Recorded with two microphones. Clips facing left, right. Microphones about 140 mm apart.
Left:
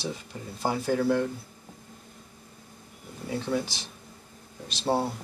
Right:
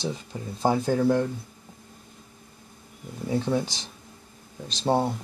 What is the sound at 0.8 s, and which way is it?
Speech, 20° right (ahead or behind).